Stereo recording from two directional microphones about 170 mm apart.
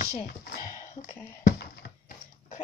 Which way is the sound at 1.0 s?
70° left (ahead or behind).